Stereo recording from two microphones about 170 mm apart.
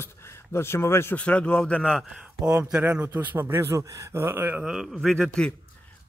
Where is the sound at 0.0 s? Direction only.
15° left (ahead or behind).